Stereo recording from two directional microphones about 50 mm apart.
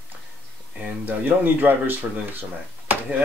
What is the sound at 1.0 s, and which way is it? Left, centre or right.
Speech, right.